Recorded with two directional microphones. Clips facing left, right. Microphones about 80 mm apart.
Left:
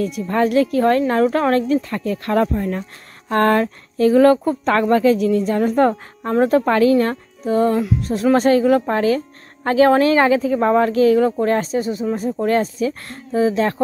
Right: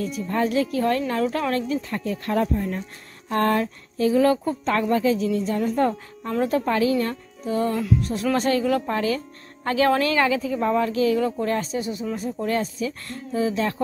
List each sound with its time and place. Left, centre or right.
0.3 s speech: left
1.8 s speech: left
3.3 s a woman's voice: left
6.6 s a woman's voice: left
6.9 s speech: left
10.5 s speech: left